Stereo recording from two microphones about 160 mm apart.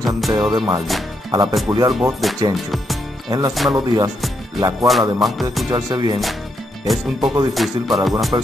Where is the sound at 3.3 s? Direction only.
20° right (ahead or behind).